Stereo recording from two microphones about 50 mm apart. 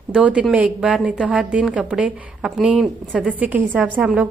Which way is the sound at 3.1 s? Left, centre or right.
Right.